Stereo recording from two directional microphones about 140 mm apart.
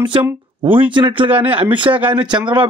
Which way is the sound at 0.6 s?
40° right (ahead or behind).